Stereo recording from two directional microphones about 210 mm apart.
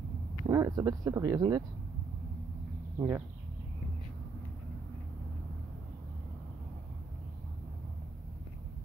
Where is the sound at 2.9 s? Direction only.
10° right (ahead or behind).